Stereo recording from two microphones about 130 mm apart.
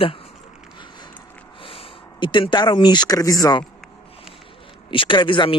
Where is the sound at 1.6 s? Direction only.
45° left (ahead or behind).